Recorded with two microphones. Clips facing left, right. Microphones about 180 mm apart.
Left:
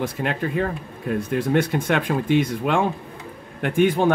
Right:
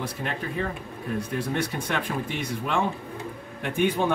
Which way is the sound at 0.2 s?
70° left (ahead or behind).